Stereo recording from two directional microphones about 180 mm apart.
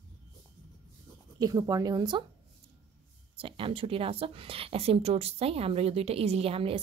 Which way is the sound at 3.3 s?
30° right (ahead or behind).